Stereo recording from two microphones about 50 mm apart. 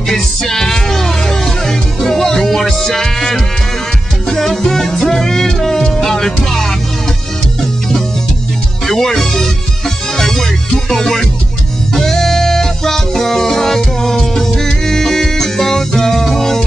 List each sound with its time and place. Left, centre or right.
0.1 s music: centre
8.8 s music: centre